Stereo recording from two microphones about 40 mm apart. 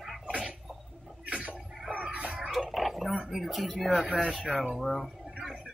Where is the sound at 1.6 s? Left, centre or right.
Centre.